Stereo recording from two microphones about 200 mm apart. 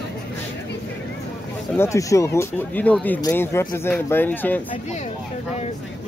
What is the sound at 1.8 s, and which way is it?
Speech, 15° left (ahead or behind).